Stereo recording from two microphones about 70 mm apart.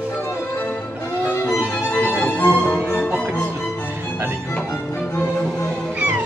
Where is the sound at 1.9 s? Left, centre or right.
Left.